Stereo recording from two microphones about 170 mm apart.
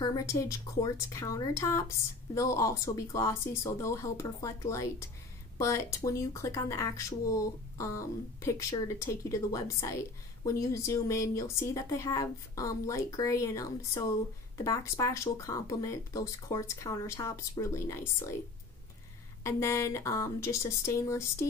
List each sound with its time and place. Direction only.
0.0 s speech: 20° left (ahead or behind)
19.4 s speech: 15° left (ahead or behind)